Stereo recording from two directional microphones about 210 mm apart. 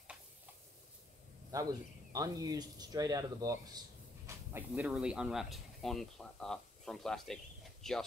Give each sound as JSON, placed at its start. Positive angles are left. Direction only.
{"t": 2.1, "sound": "speech", "side_deg": -15}